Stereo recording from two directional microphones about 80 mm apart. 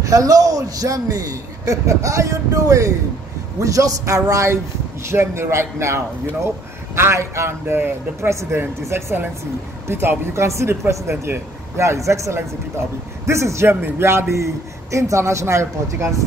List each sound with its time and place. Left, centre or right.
0.0 s a man's voice: right